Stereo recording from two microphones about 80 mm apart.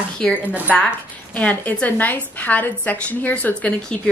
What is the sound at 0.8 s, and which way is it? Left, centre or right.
A woman's voice, centre.